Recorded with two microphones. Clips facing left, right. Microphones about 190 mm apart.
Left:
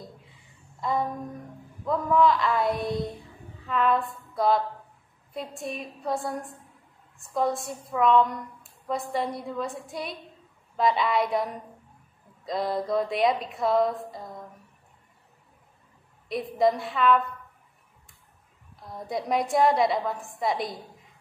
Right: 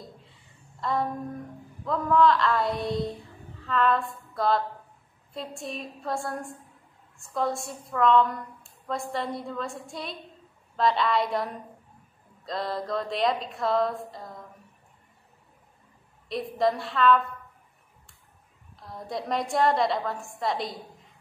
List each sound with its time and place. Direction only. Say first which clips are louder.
0.7 s a sound: left 1 dB; centre (ahead or behind)
2.0 s a woman's voice: right 1 dB; centre (ahead or behind)
12.4 s mantra: left 3 dB; centre (ahead or behind)
12.8 s a woman's voice: left 2 dB; centre (ahead or behind)
16.3 s a woman's voice: left 2 dB; centre (ahead or behind)
18.9 s a woman's voice: left 2 dB; centre (ahead or behind)